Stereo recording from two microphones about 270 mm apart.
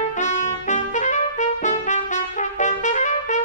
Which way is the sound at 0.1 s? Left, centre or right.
Left.